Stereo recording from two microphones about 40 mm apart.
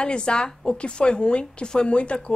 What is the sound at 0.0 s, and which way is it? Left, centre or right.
A woman's voice, left.